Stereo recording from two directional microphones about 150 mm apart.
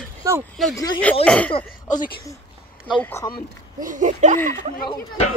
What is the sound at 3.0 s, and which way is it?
Speech, 15° left (ahead or behind).